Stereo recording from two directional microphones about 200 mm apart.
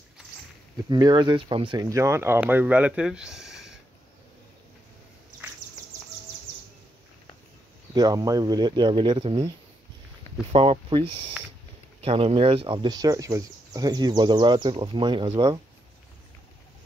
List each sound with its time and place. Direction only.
0.8 s speech: 20° right (ahead or behind); by 3.7 s centre (ahead or behind)
7.9 s speech: 20° right (ahead or behind)
10.5 s speech: 30° right (ahead or behind)